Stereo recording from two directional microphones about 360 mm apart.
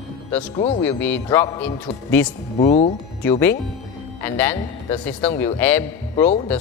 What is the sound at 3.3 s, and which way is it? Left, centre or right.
A man's voice, centre.